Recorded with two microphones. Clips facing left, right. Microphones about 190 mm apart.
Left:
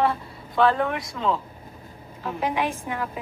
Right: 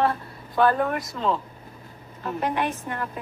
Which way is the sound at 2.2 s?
10° left (ahead or behind).